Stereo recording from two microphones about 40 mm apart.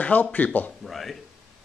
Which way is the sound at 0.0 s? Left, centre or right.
Left.